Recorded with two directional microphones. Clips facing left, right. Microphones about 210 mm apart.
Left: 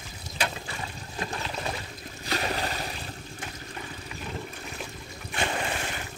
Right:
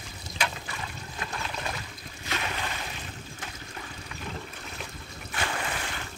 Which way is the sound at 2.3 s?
35° left (ahead or behind).